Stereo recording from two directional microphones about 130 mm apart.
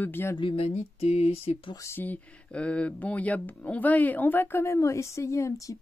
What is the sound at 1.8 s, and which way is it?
Speech, 15° left (ahead or behind).